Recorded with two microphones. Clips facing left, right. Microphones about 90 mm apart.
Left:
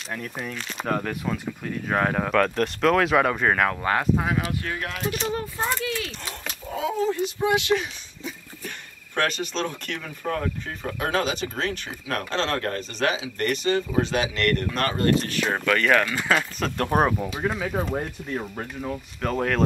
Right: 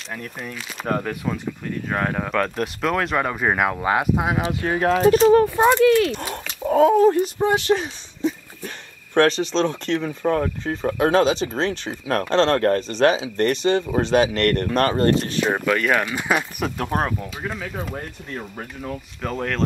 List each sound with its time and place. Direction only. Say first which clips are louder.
0.1 s speech: even; centre (ahead or behind)
3.4 s speech: right 2 dB; 10° right (ahead or behind)
4.7 s speech: right 13 dB; 35° right (ahead or behind)
5.3 s speech: right 13 dB; 70° right (ahead or behind); by 7.2 s 50° right (ahead or behind)
7.3 s a sound: right 3 dB; 35° right (ahead or behind)
9.4 s speech: right 7 dB; 25° right (ahead or behind)
14.1 s speech: right 6 dB; 45° right (ahead or behind); by 15.4 s 30° right (ahead or behind)
15.5 s speech: left 1 dB; 10° right (ahead or behind)
16.7 s speech: left 3 dB; 5° right (ahead or behind)
17.0 s speech: left 3 dB; 10° left (ahead or behind)